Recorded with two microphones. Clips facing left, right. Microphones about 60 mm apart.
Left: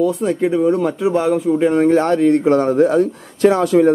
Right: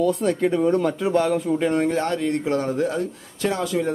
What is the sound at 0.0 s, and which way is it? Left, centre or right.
Speech, centre.